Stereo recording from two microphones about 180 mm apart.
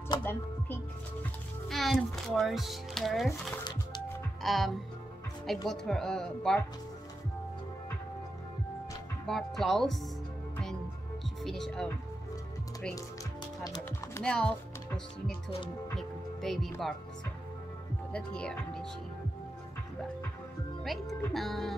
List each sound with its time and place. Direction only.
0.2 s speech: 10° left (ahead or behind)
1.7 s speech: centre (ahead or behind)
3.3 s speech: 25° left (ahead or behind)
4.4 s speech: centre (ahead or behind)
9.2 s speech: centre (ahead or behind)
11.4 s speech: centre (ahead or behind)
13.7 s speech: 15° left (ahead or behind)
14.2 s speech: 5° left (ahead or behind)
16.0 s music: centre (ahead or behind)
18.1 s speech: 5° left (ahead or behind)
20.8 s speech: centre (ahead or behind)